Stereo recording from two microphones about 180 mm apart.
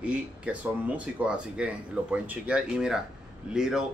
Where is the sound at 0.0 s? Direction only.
5° right (ahead or behind).